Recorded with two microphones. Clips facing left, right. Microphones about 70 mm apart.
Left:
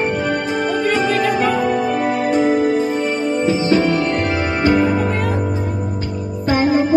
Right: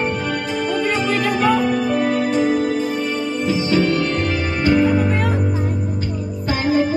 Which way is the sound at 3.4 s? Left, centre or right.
Left.